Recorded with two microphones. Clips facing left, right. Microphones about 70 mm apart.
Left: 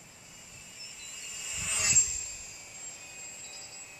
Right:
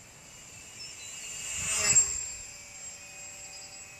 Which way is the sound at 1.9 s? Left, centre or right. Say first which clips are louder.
Right 1 dB; right.